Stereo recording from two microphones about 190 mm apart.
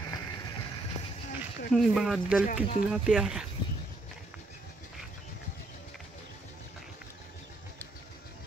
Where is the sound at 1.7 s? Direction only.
Centre (ahead or behind).